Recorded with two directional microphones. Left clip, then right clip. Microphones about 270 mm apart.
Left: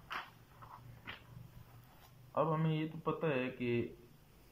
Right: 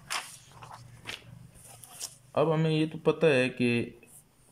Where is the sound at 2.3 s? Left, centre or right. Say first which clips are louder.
Right 9 dB; centre.